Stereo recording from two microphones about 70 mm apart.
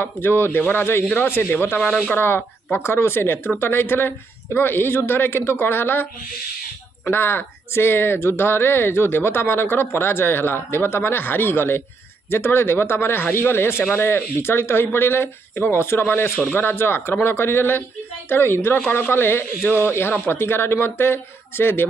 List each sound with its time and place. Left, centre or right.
0.0 s speech: left
1.8 s speech: centre
2.1 s speech: left
7.1 s speech: left